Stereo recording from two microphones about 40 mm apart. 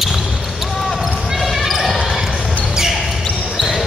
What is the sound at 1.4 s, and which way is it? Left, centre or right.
Basketball bounce, centre.